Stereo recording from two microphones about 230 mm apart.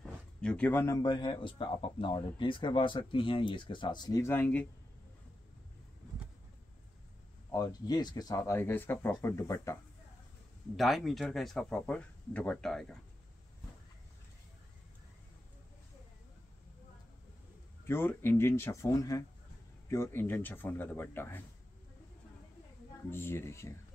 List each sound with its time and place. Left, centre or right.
0.0 s a man's voice: centre
7.5 s speech: centre
10.8 s speech: centre
17.8 s speech: centre
23.0 s speech: centre